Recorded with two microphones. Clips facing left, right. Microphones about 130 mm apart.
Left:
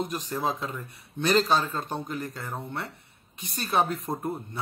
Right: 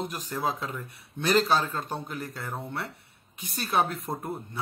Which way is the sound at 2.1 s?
15° left (ahead or behind).